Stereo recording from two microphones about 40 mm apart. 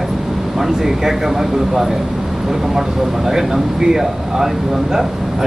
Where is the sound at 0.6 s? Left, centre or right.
Centre.